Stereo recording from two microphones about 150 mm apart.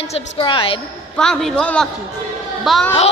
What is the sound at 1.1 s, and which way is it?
A man's voice, 5° left (ahead or behind).